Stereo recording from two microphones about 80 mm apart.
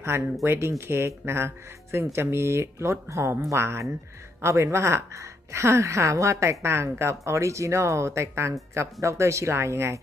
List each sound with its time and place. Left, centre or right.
0.0 s a woman's voice: right